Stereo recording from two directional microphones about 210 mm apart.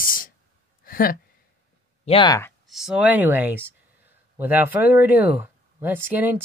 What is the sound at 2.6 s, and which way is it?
Speech, centre (ahead or behind).